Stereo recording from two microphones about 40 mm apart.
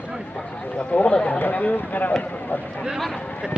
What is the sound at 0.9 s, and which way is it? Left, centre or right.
Speech, left.